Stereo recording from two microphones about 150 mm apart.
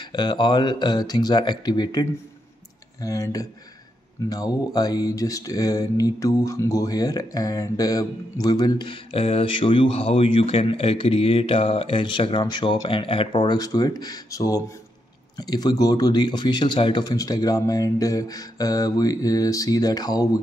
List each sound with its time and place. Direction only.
0.0 s mantra: 30° left (ahead or behind)